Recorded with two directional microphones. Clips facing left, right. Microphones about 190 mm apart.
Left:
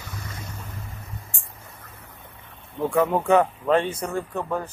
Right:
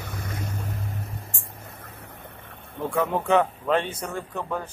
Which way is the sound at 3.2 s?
5° left (ahead or behind).